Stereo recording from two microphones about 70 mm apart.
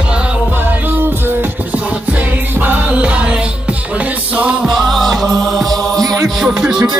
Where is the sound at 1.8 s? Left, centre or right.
Centre.